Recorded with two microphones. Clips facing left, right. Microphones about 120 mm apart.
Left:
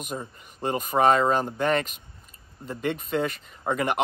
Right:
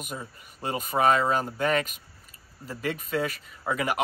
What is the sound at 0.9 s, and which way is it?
Speech, 20° left (ahead or behind).